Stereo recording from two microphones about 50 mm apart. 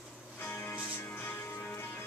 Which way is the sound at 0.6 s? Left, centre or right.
Left.